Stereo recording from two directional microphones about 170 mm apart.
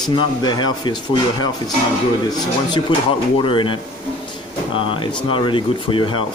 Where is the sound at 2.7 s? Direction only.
30° left (ahead or behind).